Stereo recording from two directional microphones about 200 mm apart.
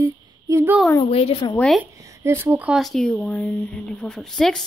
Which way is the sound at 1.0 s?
30° left (ahead or behind).